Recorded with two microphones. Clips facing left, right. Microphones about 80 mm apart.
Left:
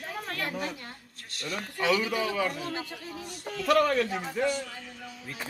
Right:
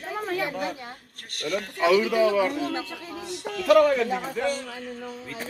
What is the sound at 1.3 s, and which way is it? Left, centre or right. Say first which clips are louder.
Speech: right 8 dB; right.